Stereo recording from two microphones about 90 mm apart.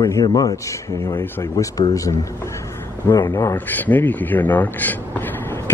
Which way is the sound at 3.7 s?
20° left (ahead or behind).